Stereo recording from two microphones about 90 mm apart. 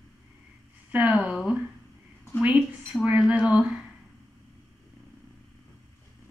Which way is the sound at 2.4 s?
15° right (ahead or behind).